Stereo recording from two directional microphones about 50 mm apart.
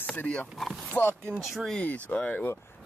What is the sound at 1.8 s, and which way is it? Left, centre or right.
Speech, left.